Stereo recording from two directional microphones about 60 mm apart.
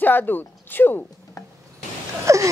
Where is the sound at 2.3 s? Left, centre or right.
Right.